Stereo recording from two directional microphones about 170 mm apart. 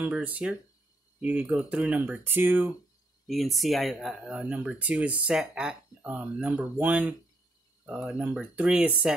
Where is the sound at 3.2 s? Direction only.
Centre (ahead or behind).